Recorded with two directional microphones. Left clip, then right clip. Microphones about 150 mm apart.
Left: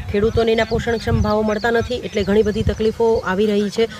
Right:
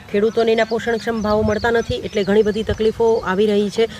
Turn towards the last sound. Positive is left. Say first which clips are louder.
# right 1 dB
turn(degrees=-25)  # may be behind; listen again after turning